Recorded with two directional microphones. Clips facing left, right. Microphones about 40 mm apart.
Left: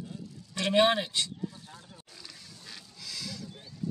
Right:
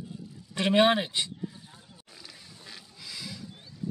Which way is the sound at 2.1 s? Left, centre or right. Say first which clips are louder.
Right 3 dB; centre.